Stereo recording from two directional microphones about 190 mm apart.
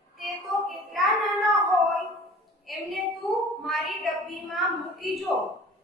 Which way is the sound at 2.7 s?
Centre (ahead or behind).